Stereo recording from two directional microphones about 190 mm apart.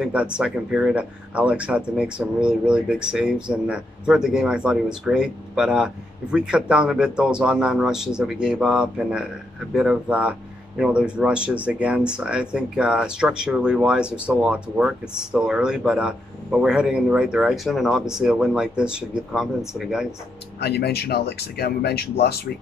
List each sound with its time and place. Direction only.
0.0 s speech: 5° right (ahead or behind)
20.6 s speech: 60° left (ahead or behind)